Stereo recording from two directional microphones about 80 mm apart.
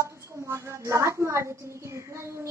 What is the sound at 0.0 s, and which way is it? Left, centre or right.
A woman's voice, right.